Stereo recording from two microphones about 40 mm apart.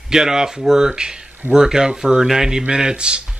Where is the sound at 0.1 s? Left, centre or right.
Centre.